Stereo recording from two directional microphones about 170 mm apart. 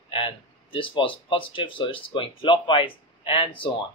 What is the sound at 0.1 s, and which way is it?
A man's voice, 30° left (ahead or behind).